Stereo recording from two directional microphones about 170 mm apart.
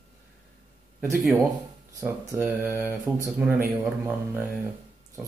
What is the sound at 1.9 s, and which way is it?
Speech, 15° right (ahead or behind).